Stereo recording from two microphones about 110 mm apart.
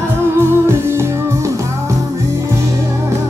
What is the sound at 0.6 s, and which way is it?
Music, 25° right (ahead or behind).